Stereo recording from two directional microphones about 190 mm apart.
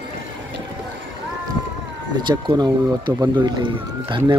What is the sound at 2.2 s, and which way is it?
Speech, 20° right (ahead or behind).